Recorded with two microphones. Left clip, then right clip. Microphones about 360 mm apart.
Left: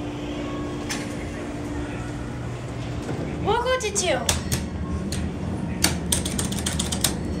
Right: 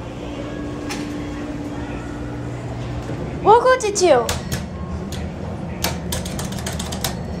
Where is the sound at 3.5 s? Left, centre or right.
Centre.